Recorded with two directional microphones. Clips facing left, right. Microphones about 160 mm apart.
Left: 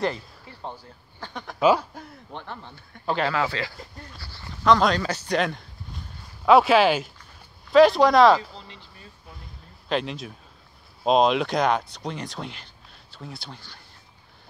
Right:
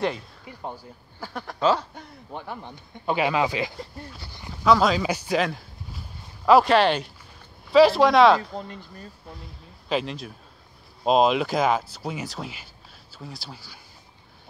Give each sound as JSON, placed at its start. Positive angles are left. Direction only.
{"t": 0.5, "sound": "speech", "side_deg": -10}
{"t": 1.6, "sound": "speech", "side_deg": 10}
{"t": 2.3, "sound": "speech", "side_deg": -10}
{"t": 4.6, "sound": "speech", "side_deg": -5}
{"t": 8.4, "sound": "speech", "side_deg": -50}
{"t": 9.8, "sound": "speech", "side_deg": 0}